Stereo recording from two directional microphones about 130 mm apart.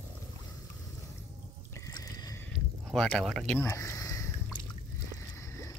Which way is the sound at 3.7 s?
20° left (ahead or behind).